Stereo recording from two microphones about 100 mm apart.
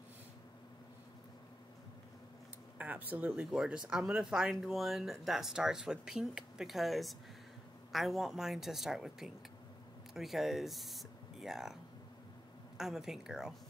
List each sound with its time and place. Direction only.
2.8 s speech: 15° right (ahead or behind)